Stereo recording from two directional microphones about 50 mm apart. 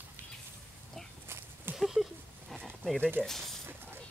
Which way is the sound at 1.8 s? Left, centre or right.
Centre.